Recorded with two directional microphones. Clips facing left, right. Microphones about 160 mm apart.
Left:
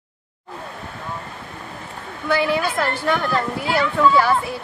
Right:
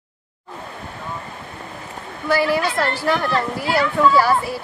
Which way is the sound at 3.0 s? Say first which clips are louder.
Right 1 dB; 5° right (ahead or behind).